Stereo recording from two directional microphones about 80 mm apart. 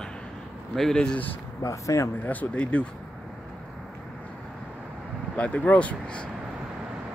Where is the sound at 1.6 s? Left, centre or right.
Left.